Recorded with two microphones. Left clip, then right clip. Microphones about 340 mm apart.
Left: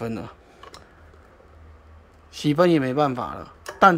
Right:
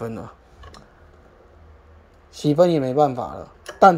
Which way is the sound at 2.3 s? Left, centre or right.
Centre.